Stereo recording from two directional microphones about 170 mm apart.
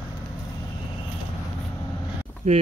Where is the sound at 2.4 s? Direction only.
45° right (ahead or behind).